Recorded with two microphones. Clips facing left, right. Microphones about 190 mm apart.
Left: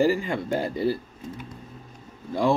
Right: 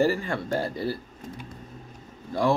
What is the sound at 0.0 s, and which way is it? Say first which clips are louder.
Speech: left 2 dB; 15° left (ahead or behind).